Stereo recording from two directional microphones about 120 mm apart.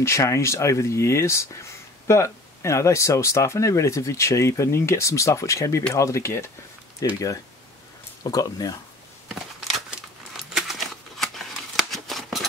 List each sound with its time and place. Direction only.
0.0 s speech: 25° left (ahead or behind)
8.2 s speech: 30° left (ahead or behind)
9.8 s a sound: 5° right (ahead or behind)